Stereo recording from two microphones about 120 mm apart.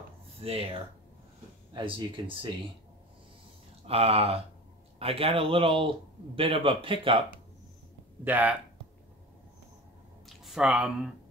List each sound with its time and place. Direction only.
0.4 s speech: 55° right (ahead or behind)
1.7 s speech: 40° right (ahead or behind)
3.8 s a man's voice: 55° right (ahead or behind)
8.2 s speech: 15° right (ahead or behind)
10.2 s a sound: centre (ahead or behind)